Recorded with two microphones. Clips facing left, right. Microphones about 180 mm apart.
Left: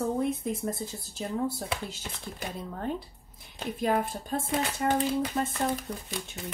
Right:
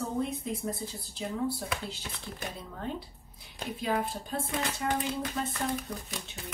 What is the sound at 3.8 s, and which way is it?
A woman's voice, 45° left (ahead or behind).